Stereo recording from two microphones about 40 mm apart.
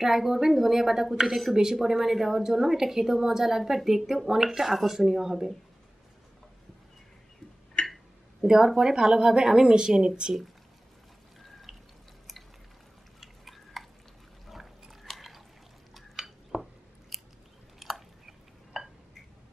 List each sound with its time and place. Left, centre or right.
0.0 s a woman's voice: centre
7.8 s a sound: centre
8.6 s a woman's voice: centre
11.7 s drip: centre
13.2 s chewing: centre
14.5 s drip: centre
15.9 s a sound: centre
17.1 s scissors: centre
17.7 s a sound: centre